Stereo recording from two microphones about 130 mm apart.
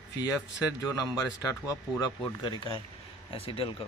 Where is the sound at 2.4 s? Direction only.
40° left (ahead or behind).